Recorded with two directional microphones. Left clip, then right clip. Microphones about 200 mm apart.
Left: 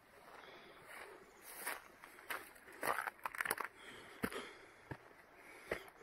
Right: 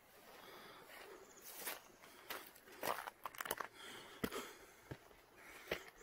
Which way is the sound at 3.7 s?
15° right (ahead or behind).